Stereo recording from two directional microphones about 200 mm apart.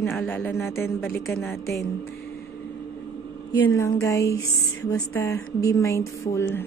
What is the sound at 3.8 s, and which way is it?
Speech, 15° left (ahead or behind).